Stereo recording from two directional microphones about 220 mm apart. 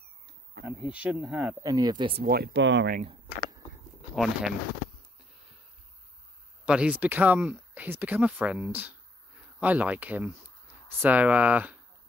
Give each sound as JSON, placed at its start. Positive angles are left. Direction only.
{"t": 0.7, "sound": "speech", "side_deg": -5}
{"t": 1.7, "sound": "speech", "side_deg": -20}
{"t": 2.2, "sound": "speech", "side_deg": -45}
{"t": 3.0, "sound": "speech", "side_deg": -25}
{"t": 4.1, "sound": "speech", "side_deg": 0}
{"t": 6.6, "sound": "speech", "side_deg": -5}